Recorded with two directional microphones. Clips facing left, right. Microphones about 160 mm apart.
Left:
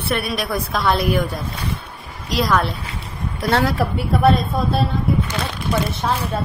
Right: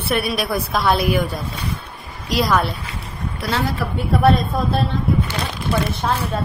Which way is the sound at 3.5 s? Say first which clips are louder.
Left 4 dB; 75° left (ahead or behind).